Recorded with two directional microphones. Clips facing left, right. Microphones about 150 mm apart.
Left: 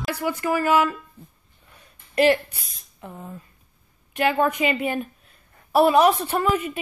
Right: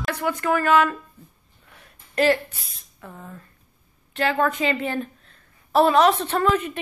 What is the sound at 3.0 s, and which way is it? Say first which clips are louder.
A woman's voice: left 2 dB; 20° left (ahead or behind).